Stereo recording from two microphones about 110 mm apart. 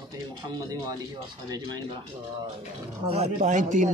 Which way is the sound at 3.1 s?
85° right.